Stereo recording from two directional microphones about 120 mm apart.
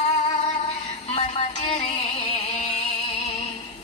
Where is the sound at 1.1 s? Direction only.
55° left (ahead or behind).